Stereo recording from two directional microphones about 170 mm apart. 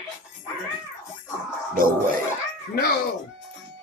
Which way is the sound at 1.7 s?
55° right (ahead or behind).